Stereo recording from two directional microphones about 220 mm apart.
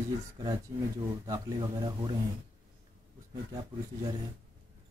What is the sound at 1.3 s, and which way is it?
Speech, 15° right (ahead or behind).